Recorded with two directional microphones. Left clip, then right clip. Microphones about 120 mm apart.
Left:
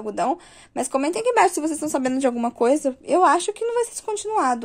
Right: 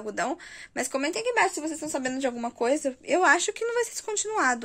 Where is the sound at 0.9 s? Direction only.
25° left (ahead or behind).